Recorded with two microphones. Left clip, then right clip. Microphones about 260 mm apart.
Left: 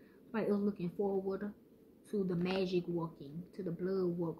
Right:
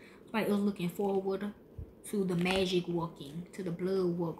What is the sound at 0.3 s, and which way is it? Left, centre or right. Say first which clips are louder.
Speech: right 3 dB; centre.